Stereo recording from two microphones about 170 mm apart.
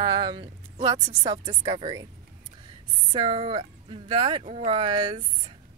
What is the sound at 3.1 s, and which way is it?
Speech, 30° right (ahead or behind).